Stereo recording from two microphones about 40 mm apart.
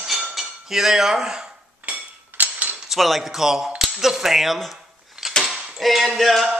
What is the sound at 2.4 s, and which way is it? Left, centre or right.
Cutlery, right.